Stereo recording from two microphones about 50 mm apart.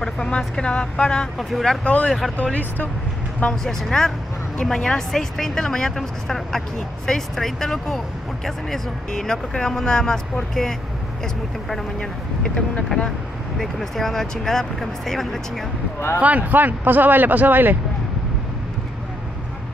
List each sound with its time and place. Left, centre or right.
0.0 s speech: centre
1.4 s speech: centre
1.9 s speech: left
3.6 s speech: centre
12.0 s speech: centre
13.6 s speech: centre
16.2 s speech: right